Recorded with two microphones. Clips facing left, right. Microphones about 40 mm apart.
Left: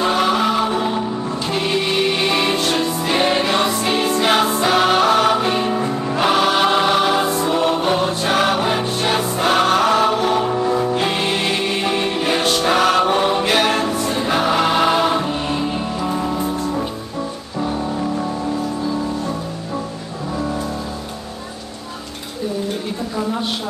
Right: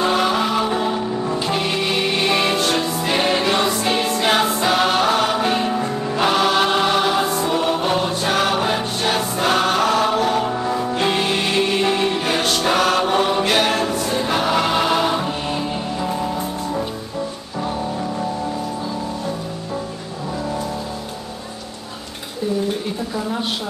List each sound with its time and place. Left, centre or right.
0.0 s music: centre
14.0 s choir: centre
14.3 s music: centre